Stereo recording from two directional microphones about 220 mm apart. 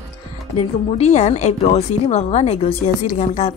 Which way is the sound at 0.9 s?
30° left (ahead or behind).